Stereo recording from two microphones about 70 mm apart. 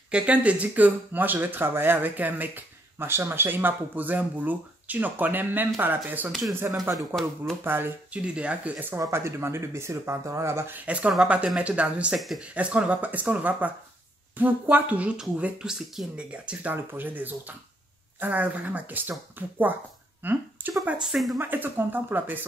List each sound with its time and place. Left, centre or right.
0.1 s speech: centre
8.1 s speech: centre
9.1 s speech: right
11.2 s speech: centre
16.7 s speech: right
21.0 s speech: centre
21.4 s speech: right